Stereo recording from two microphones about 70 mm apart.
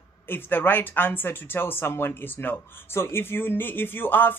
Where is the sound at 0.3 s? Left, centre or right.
Left.